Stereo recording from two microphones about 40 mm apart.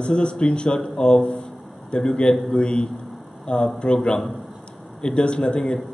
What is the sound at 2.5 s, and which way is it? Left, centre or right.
A man's voice, left.